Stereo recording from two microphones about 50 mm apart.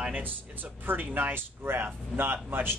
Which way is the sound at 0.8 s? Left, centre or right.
Right.